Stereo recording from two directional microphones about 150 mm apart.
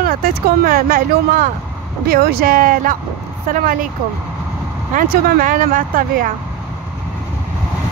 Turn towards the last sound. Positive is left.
turn(degrees=-65)  # may be behind; listen again after turning